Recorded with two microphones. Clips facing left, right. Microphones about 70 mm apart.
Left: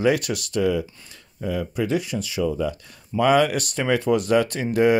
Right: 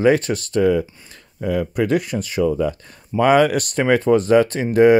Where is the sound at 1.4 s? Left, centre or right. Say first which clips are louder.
Right 5 dB; right.